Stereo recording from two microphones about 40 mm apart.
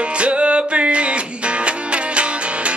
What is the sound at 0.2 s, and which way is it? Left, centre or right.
Music, right.